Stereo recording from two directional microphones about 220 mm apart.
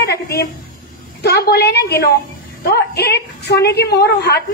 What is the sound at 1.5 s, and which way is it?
A woman's voice, 50° left (ahead or behind).